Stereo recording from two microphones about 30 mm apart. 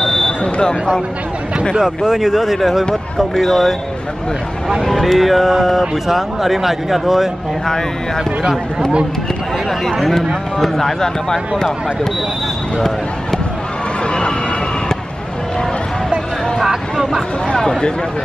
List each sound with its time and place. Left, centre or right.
0.0 s a sound: centre
0.6 s speech: left
1.8 s speech: centre
5.0 s speech: centre
7.6 s speech: centre
10.8 s speech: centre
12.7 s speech: centre
17.6 s speech: centre